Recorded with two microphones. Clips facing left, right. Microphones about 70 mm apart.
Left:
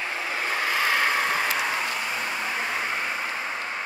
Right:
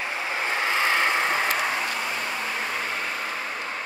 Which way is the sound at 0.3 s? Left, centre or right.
Right.